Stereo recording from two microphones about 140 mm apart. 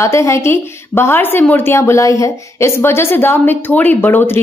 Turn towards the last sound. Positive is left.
turn(degrees=15)  # may be behind; listen again after turning